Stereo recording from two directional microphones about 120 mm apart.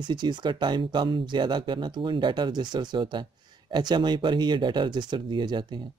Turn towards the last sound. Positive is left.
turn(degrees=-40)  # may be behind; listen again after turning